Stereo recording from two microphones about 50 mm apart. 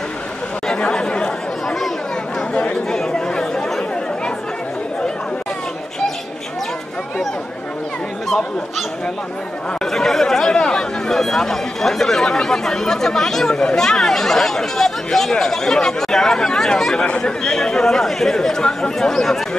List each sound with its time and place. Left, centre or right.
0.7 s chatter: centre
2.9 s chatter: centre
8.3 s speech: centre
9.8 s speech: centre